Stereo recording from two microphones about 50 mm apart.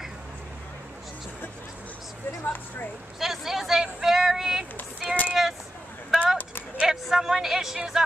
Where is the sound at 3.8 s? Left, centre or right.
Centre.